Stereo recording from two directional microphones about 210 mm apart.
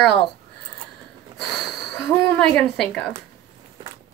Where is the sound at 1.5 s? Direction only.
Centre (ahead or behind).